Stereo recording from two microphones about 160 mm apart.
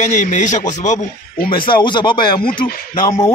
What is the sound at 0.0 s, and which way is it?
A man's voice, 50° left (ahead or behind).